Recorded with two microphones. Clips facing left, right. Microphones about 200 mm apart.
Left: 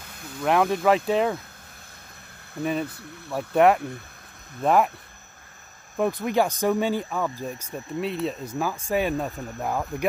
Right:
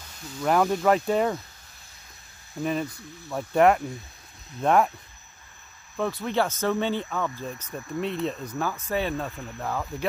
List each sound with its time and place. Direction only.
0.4 s speech: 5° left (ahead or behind)
2.5 s speech: centre (ahead or behind)
5.9 s speech: 15° left (ahead or behind)